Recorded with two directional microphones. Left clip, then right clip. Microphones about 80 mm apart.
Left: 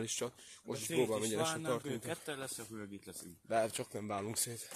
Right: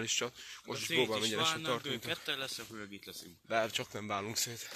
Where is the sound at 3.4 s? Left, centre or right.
Left.